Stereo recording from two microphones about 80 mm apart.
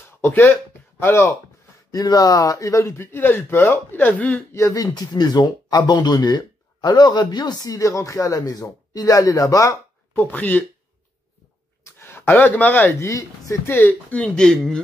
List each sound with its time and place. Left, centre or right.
0.2 s speech: left
1.9 s speech: left
3.1 s speech: left
3.9 s speech: left
4.6 s speech: left
4.9 s speech: left
7.7 s speech: left
10.1 s speech: left
11.8 s speech: left
13.0 s speech: left
13.7 s speech: left
14.2 s speech: centre